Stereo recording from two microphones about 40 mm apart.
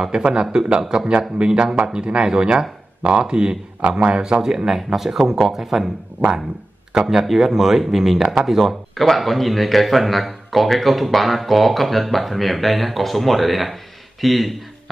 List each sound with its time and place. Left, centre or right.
0.0 s speech: right
4.4 s speech: centre
7.2 s speech: centre